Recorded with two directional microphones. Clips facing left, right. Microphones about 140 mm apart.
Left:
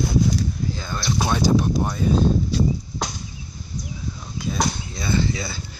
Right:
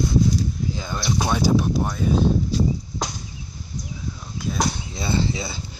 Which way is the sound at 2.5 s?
70° left (ahead or behind).